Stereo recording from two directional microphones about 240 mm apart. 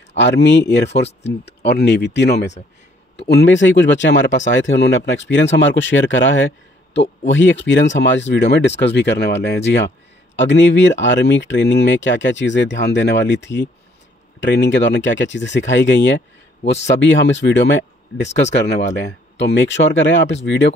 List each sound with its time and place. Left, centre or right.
0.2 s speech: left